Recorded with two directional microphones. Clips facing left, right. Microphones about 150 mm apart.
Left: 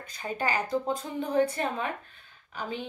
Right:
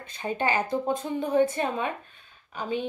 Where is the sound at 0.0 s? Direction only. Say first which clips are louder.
Right 3 dB; 25° right (ahead or behind).